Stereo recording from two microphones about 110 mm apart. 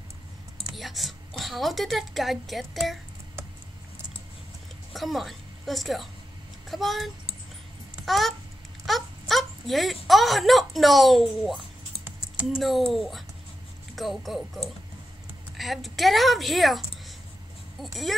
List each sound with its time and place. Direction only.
0.7 s a woman's voice: centre (ahead or behind)
4.9 s a woman's voice: centre (ahead or behind)
7.9 s babbling: centre (ahead or behind)
8.8 s speech: centre (ahead or behind)
12.0 s typing: 10° right (ahead or behind)
12.9 s a woman's voice: centre (ahead or behind)